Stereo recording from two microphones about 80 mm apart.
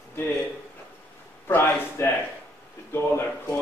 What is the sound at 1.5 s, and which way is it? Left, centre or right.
A man's voice, left.